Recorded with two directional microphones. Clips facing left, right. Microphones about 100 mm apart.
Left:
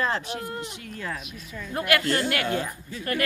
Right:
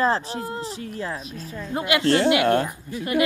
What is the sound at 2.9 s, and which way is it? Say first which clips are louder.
Speech: right 5 dB; 15° right (ahead or behind).